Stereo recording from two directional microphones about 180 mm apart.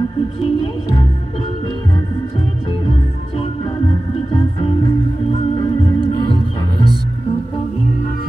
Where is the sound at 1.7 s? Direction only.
25° left (ahead or behind).